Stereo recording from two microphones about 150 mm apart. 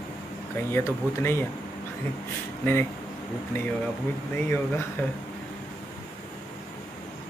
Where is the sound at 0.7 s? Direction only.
15° left (ahead or behind).